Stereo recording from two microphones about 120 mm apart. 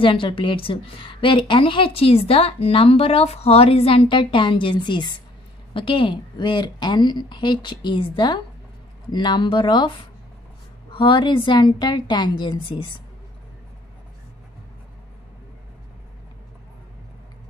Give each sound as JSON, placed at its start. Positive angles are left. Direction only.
{"t": 0.0, "sound": "a woman's voice", "side_deg": 45}
{"t": 11.0, "sound": "a woman's voice", "side_deg": 40}